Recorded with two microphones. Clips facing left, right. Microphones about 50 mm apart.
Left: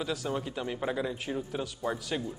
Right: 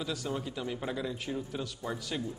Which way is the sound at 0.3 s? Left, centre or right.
Centre.